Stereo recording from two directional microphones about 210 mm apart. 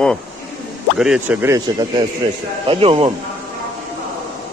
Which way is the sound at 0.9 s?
5° right (ahead or behind).